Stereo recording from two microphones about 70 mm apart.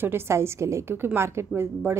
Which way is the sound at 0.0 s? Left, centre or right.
Right.